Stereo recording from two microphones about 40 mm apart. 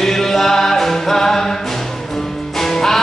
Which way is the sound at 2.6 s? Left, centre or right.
Centre.